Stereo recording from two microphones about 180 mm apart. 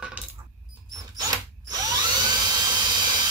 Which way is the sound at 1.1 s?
20° right (ahead or behind).